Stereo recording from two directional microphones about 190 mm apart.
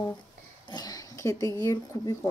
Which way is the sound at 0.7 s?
20° left (ahead or behind).